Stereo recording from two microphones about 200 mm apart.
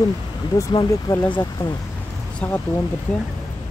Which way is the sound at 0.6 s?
20° left (ahead or behind).